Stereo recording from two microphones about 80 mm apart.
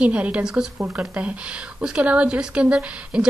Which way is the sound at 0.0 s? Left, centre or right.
Centre.